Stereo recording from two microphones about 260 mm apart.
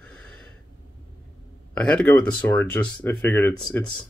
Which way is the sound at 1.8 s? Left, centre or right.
Centre.